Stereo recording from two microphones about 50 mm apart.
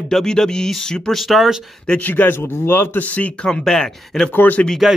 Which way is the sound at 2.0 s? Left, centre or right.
Left.